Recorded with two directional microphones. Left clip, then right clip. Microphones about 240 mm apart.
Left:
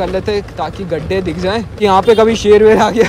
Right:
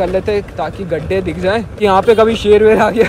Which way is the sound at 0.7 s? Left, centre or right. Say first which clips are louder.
Even; left.